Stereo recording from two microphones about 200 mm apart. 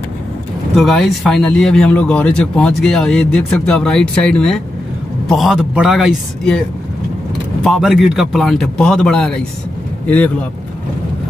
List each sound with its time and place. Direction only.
0.7 s speech: centre (ahead or behind)
7.6 s speech: centre (ahead or behind)